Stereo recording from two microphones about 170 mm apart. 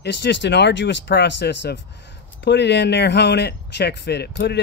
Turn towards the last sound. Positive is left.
turn(degrees=85)